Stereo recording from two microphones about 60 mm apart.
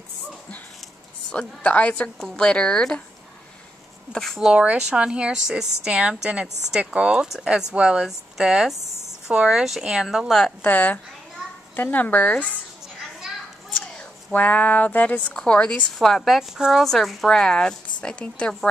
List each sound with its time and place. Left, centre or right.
1.3 s a sound: centre
2.1 s speech: centre
4.1 s speech: centre
4.4 s a woman's voice: centre
10.6 s a sound: left
14.3 s a sound: left
15.3 s speech: centre
16.0 s speech: centre
16.3 s a woman's voice: centre
16.8 s speech: centre